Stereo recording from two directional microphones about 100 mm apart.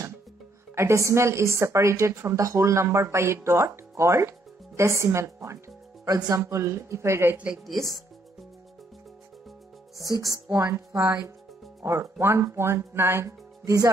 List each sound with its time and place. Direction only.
0.7 s a woman's voice: 30° right (ahead or behind)
6.0 s a woman's voice: 40° right (ahead or behind)
10.2 s a woman's voice: 35° right (ahead or behind)